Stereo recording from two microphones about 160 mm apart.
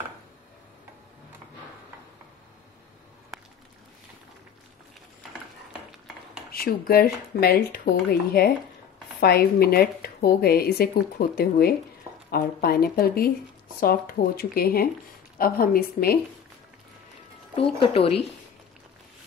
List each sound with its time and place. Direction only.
6.5 s a woman's voice: 70° left (ahead or behind)
17.7 s a woman's voice: 35° left (ahead or behind)